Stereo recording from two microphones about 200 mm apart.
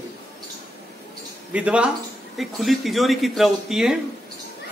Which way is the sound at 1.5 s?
5° right (ahead or behind).